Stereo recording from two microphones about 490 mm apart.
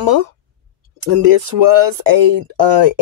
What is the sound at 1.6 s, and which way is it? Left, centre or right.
Speech, right.